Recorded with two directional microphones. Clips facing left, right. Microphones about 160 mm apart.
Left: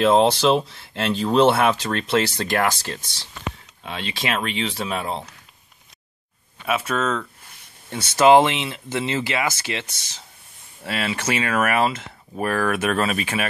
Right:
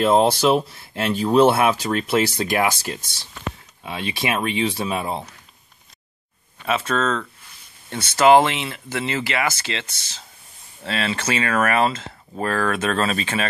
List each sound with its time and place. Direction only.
0.0 s speech: 5° right (ahead or behind)
6.6 s speech: 5° left (ahead or behind)